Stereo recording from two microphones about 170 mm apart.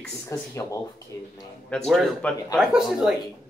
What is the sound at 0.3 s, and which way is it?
Speech, 20° left (ahead or behind).